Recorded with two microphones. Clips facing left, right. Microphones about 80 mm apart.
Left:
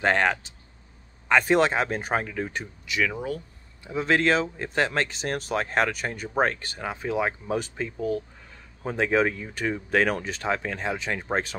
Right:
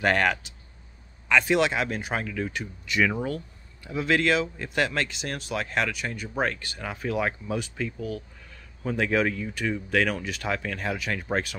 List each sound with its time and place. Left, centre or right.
0.0 s speech: left
1.3 s speech: left
2.9 s speech: centre
3.8 s speech: left
6.8 s speech: left
7.4 s speech: left